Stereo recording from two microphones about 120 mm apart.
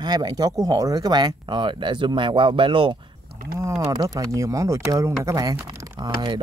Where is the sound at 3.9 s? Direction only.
30° right (ahead or behind).